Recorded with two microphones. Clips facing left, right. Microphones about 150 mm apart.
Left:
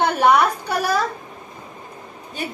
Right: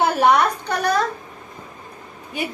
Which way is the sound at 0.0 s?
Centre (ahead or behind).